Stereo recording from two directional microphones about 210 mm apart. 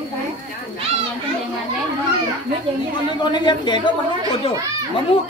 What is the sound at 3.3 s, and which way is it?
Speech, 20° left (ahead or behind).